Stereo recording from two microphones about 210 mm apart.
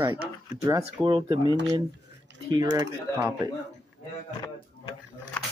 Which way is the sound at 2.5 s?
15° right (ahead or behind).